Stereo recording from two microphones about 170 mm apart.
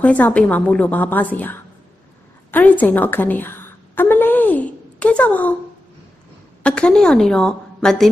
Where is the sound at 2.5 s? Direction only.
10° left (ahead or behind).